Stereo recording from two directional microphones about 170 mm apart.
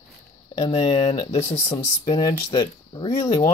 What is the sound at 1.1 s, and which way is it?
Speech, 40° left (ahead or behind).